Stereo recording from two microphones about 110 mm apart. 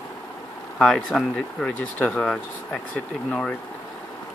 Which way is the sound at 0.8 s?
5° left (ahead or behind).